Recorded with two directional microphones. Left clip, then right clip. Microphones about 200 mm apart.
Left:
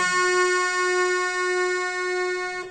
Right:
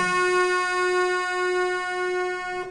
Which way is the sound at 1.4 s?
15° left (ahead or behind).